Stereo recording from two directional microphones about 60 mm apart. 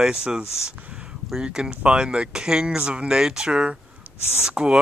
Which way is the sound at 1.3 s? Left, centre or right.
Centre.